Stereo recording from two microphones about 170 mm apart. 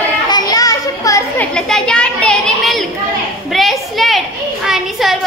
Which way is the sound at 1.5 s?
5° left (ahead or behind).